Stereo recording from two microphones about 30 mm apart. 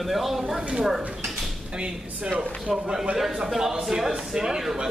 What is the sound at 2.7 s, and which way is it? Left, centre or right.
Speech, centre.